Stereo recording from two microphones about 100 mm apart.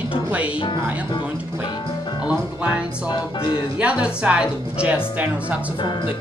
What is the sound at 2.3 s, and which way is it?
Speech, 10° right (ahead or behind).